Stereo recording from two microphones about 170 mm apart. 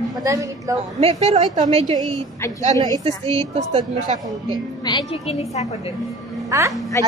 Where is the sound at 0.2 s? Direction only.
20° right (ahead or behind).